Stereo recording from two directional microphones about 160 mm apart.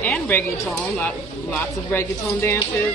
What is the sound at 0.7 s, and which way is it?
Speech, 5° left (ahead or behind).